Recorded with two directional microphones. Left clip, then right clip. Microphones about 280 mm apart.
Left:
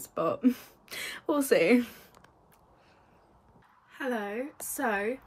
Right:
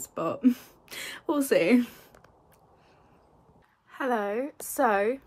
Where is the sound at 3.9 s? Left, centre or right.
Centre.